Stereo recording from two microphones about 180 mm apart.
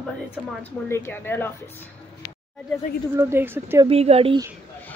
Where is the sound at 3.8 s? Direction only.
35° right (ahead or behind).